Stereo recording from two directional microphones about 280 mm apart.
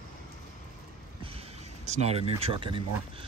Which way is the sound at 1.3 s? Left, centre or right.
Right.